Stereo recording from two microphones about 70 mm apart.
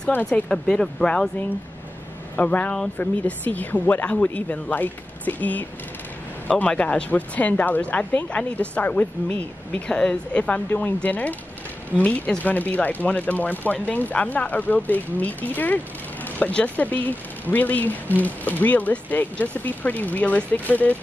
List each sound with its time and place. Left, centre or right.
0.5 s speech: centre
2.3 s speech: left
10.7 s speech: left
11.9 s speech: centre
12.4 s speech: left